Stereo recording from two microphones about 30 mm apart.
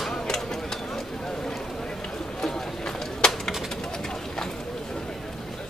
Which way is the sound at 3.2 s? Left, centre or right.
Left.